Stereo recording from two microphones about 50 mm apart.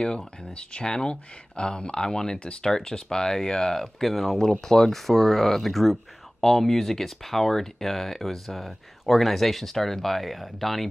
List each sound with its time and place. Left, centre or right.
0.4 s speech: left; by 10.9 s centre